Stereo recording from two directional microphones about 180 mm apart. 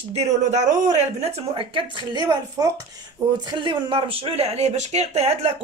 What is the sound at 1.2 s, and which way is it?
Speech, 30° right (ahead or behind).